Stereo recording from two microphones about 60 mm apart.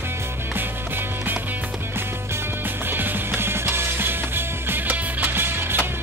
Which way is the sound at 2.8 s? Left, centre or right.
Right.